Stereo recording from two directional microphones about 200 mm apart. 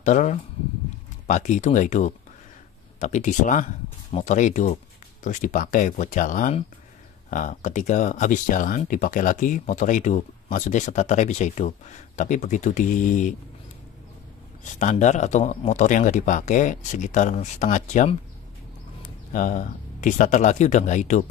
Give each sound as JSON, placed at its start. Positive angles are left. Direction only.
{"t": 0.0, "sound": "speech", "side_deg": 40}
{"t": 14.6, "sound": "speech", "side_deg": 40}
{"t": 19.3, "sound": "speech", "side_deg": 40}